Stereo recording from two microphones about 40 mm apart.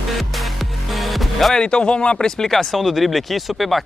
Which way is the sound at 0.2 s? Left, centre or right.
Centre.